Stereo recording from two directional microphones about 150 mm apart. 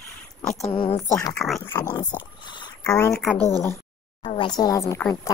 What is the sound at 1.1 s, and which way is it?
Speech, 20° left (ahead or behind).